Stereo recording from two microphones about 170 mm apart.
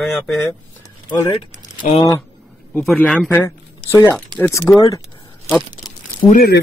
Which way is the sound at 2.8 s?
5° left (ahead or behind).